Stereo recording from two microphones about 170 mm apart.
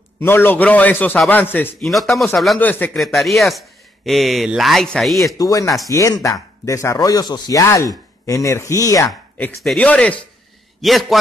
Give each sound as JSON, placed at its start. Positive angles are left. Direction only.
{"t": 0.2, "sound": "a man's voice", "side_deg": 10}
{"t": 1.9, "sound": "a man's voice", "side_deg": 0}
{"t": 3.0, "sound": "a man's voice", "side_deg": 0}
{"t": 5.4, "sound": "speech", "side_deg": 20}
{"t": 9.6, "sound": "a man's voice", "side_deg": 5}